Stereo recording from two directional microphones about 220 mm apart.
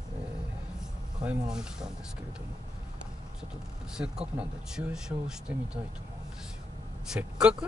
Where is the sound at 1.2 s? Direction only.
5° right (ahead or behind).